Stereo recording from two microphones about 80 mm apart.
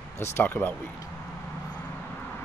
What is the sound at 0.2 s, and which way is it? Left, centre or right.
Speech, left.